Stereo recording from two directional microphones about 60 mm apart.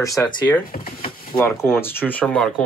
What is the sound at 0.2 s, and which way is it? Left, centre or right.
Speech, left.